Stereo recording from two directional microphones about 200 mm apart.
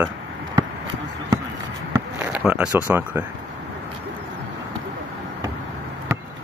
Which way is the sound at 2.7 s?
10° right (ahead or behind).